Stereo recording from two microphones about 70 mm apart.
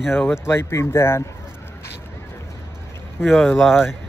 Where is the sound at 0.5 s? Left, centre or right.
Left.